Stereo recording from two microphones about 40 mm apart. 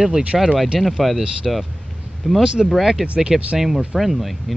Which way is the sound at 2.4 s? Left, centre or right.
Centre.